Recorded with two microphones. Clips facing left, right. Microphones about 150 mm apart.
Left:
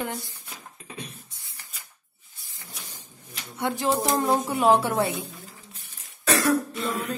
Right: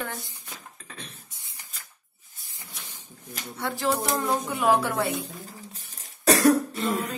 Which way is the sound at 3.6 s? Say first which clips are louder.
Left 2 dB; 20° left (ahead or behind).